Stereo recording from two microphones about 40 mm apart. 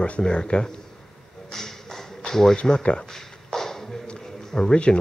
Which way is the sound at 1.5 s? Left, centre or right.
Centre.